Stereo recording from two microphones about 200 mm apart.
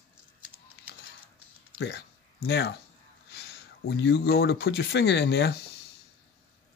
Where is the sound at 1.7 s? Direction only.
55° left (ahead or behind).